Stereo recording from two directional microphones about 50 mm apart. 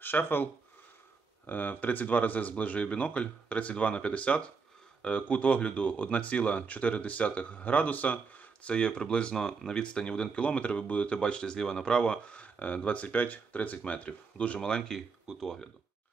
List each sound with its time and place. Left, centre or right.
0.0 s speech: left
8.6 s speech: left
14.6 s speech: centre